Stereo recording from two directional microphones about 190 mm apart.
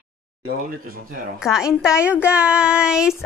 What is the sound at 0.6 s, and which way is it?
Speech, 50° right (ahead or behind).